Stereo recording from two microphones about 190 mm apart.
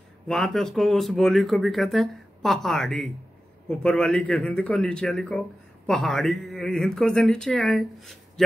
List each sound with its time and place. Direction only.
0.3 s speech: centre (ahead or behind)